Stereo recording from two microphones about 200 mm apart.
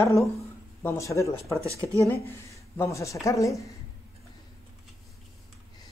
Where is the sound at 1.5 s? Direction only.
15° right (ahead or behind).